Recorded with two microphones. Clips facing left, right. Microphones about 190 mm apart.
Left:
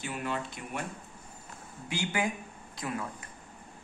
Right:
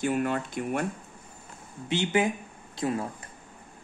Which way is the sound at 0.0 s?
50° right (ahead or behind).